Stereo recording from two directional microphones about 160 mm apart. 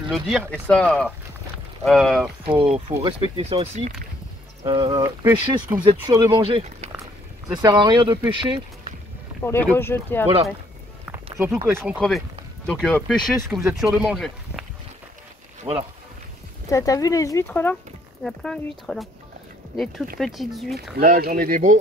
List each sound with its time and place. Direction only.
0.1 s speech: centre (ahead or behind)
2.4 s speech: 35° right (ahead or behind)
4.6 s speech: 30° right (ahead or behind)
9.4 s speech: 15° left (ahead or behind)
11.3 s speech: 15° right (ahead or behind)
11.8 s speech: centre (ahead or behind)
15.7 s speech: 35° right (ahead or behind)
16.6 s speech: 20° left (ahead or behind); by 19.0 s 5° left (ahead or behind)
20.2 s speech: centre (ahead or behind)
21.0 s speech: 60° right (ahead or behind)